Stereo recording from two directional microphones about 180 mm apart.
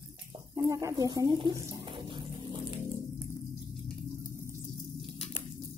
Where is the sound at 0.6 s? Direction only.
20° right (ahead or behind).